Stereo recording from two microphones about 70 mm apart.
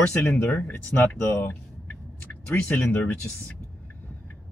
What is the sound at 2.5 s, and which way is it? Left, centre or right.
Speech, left.